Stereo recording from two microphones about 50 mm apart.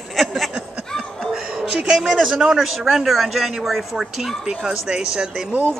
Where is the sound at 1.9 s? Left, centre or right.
Centre.